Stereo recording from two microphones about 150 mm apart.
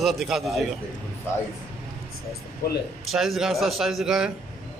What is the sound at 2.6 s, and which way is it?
Speech, 90° left.